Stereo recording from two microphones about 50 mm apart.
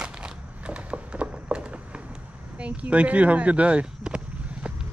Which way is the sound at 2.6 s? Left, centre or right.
Right.